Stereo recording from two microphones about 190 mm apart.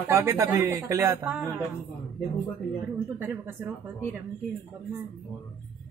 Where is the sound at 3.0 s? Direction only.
10° right (ahead or behind).